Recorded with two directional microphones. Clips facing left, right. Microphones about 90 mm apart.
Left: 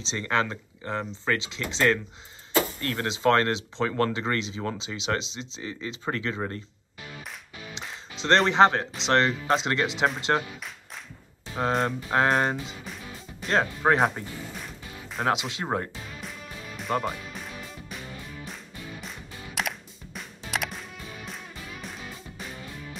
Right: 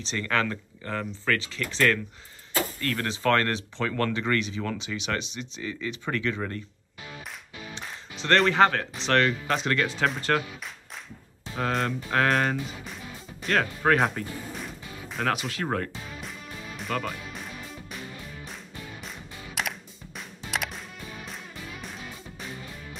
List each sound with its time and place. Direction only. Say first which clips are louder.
0.1 s speech: left 1 dB; 25° left (ahead or behind)
8.2 s speech: left 1 dB; 25° left (ahead or behind)
11.5 s speech: left 2 dB; 30° left (ahead or behind)
14.6 s music: right 2 dB; centre (ahead or behind)
15.2 s speech: left 1 dB; 25° left (ahead or behind)
16.2 s music: even; centre (ahead or behind)